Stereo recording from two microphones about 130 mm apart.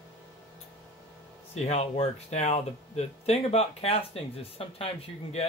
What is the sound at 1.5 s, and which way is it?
Speech, 60° left (ahead or behind).